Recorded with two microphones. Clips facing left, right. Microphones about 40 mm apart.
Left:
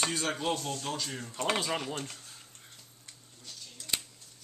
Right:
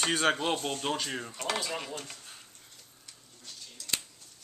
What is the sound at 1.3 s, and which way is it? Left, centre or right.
Speech, left.